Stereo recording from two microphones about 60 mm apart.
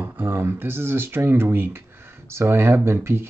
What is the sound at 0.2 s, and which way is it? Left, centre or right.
Speech, right.